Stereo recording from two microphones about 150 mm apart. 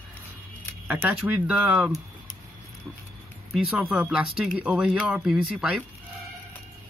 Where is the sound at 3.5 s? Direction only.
5° right (ahead or behind).